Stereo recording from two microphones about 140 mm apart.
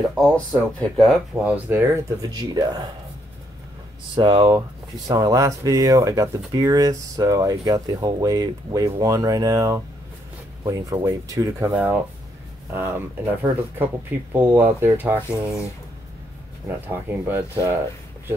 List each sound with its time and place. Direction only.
0.1 s speech: 5° left (ahead or behind)
1.4 s speech: 10° right (ahead or behind)
2.3 s speech: 30° right (ahead or behind)
4.1 s speech: 35° right (ahead or behind); by 15.5 s 20° right (ahead or behind)
16.6 s speech: 15° right (ahead or behind)